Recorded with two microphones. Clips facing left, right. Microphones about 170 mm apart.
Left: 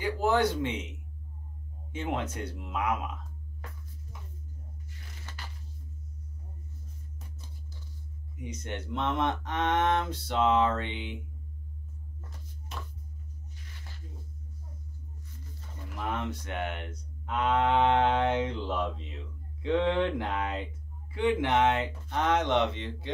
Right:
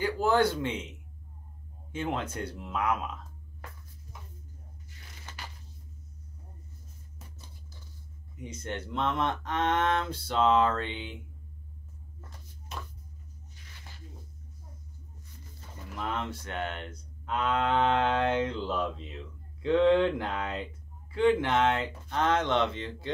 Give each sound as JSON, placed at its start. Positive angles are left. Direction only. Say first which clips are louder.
{"t": 0.0, "sound": "speech", "louder": "right 1 dB", "side_deg": 20}
{"t": 2.0, "sound": "speech", "louder": "even", "side_deg": 15}
{"t": 5.3, "sound": "a sound", "louder": "right 2 dB", "side_deg": -20}
{"t": 8.5, "sound": "speech", "louder": "even", "side_deg": 20}
{"t": 16.1, "sound": "speech", "louder": "left 1 dB", "side_deg": 15}
{"t": 17.4, "sound": "mantra", "louder": "left 2 dB", "side_deg": 20}
{"t": 21.1, "sound": "speech", "louder": "right 2 dB", "side_deg": 15}